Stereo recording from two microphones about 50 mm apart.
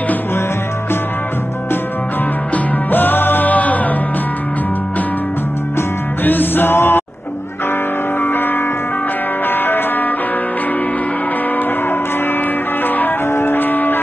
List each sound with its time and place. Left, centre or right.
2.5 s music: left
6.2 s music: left
8.2 s music: left
9.5 s music: left
12.8 s music: left
13.3 s music: left